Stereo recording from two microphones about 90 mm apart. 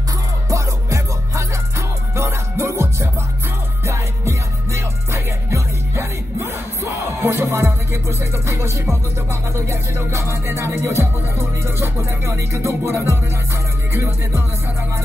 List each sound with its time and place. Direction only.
0.5 s music: 35° right (ahead or behind)